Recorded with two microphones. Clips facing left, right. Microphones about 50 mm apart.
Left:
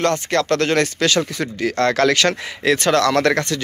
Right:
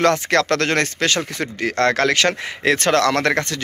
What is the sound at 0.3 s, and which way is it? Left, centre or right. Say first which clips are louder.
Speech: even; right.